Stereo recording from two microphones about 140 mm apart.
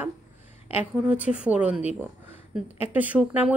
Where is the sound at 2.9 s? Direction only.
10° right (ahead or behind).